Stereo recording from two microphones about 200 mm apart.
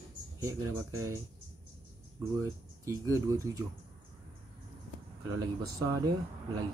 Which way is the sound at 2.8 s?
15° right (ahead or behind).